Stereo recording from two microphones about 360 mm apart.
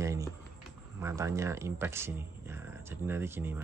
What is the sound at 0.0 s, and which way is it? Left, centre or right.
Speech, centre.